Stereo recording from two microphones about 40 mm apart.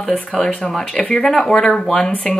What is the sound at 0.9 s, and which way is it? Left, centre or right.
Speech, left.